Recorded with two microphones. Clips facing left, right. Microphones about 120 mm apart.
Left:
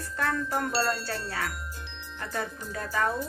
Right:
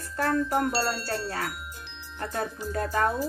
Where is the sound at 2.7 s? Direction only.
50° right (ahead or behind).